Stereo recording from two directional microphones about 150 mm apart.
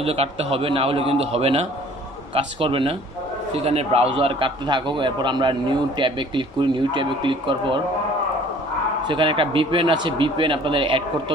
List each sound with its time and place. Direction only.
0.0 s a man's voice: 40° right (ahead or behind)
9.0 s a man's voice: 35° right (ahead or behind)